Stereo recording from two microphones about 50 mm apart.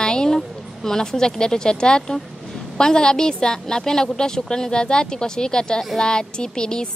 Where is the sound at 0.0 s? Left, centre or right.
Centre.